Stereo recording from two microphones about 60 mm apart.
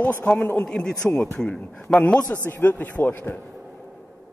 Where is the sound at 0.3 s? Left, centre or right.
Left.